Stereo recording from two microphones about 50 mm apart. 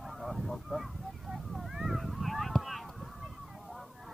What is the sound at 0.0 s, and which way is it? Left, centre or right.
Honk, centre.